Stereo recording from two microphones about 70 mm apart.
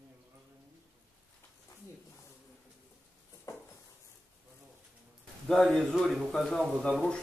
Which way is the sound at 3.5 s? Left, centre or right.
Left.